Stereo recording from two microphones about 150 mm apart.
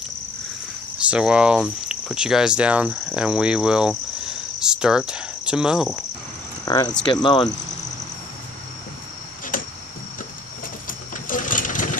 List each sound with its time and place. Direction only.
1.1 s speech: 5° right (ahead or behind)
4.3 s cricket: 5° right (ahead or behind)
6.6 s speech: 25° left (ahead or behind)
9.5 s a sound: 65° left (ahead or behind)
10.9 s sewing machine: 60° left (ahead or behind)